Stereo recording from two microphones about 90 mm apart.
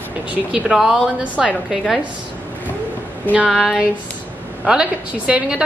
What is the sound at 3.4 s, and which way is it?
A woman's voice, 5° right (ahead or behind).